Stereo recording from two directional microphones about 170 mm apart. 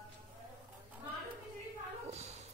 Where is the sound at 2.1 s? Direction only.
40° right (ahead or behind).